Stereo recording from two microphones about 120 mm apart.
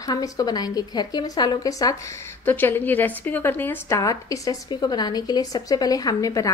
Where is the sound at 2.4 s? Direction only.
15° left (ahead or behind).